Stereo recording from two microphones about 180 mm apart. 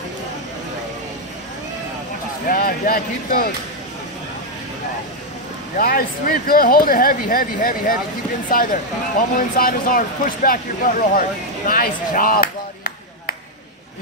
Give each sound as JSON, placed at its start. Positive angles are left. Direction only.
{"t": 2.4, "sound": "speech", "side_deg": 50}
{"t": 5.8, "sound": "speech", "side_deg": 55}